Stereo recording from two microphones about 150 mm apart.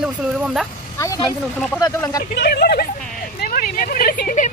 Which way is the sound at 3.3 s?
75° left (ahead or behind).